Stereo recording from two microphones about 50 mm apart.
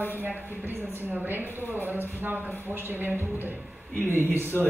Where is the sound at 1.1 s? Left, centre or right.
Right.